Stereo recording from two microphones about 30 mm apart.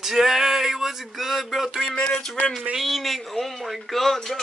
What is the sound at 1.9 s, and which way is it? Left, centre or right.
Speech, left.